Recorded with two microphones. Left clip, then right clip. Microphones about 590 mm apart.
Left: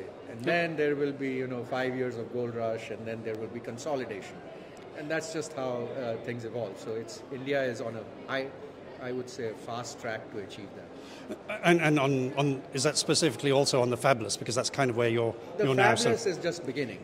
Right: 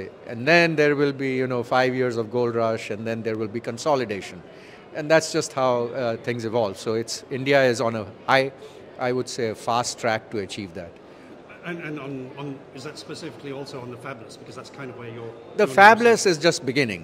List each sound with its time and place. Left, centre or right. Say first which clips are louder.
0.5 s a man's voice: right 10 dB; right
11.6 s a man's voice: left 9 dB; left
15.5 s a man's voice: right 12 dB; right